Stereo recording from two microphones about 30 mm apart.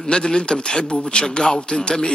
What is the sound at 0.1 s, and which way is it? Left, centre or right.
A man's voice, left.